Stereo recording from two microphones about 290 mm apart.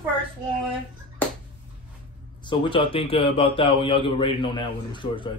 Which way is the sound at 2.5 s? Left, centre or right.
Centre.